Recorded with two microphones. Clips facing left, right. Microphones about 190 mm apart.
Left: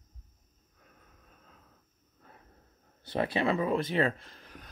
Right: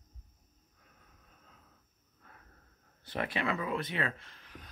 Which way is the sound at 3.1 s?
30° left (ahead or behind).